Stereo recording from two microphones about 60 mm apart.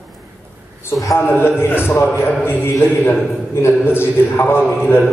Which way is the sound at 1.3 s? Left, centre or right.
Left.